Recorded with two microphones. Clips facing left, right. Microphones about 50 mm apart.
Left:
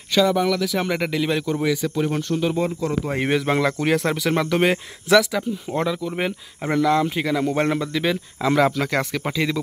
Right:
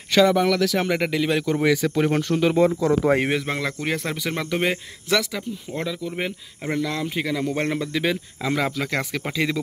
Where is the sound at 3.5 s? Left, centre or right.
Centre.